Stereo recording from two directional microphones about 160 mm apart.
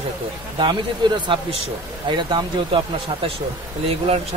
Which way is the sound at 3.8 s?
40° right (ahead or behind).